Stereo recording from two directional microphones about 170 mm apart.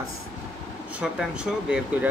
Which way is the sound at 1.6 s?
5° right (ahead or behind).